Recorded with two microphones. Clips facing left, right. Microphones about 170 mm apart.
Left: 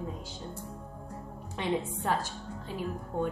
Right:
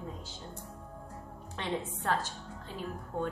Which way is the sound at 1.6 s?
10° left (ahead or behind).